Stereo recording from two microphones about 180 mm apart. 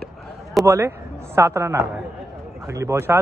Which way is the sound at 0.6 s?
15° right (ahead or behind).